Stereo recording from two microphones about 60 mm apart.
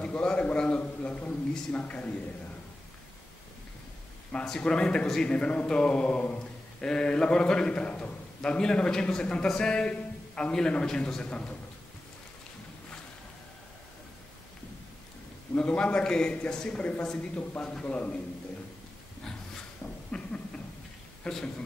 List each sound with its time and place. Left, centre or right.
0.0 s a man's voice: centre
4.5 s a man's voice: centre
15.5 s a man's voice: left
20.1 s a sound: centre
21.2 s a man's voice: centre